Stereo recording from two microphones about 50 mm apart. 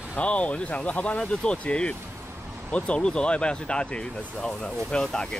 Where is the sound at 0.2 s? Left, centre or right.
Left.